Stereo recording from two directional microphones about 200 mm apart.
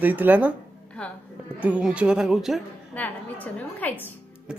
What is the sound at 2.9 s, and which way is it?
Speech, 10° left (ahead or behind).